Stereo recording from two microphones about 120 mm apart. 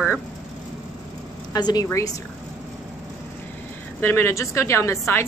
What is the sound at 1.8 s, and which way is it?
Speech, 25° left (ahead or behind).